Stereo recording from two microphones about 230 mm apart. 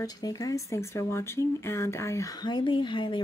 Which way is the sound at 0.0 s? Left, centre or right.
Centre.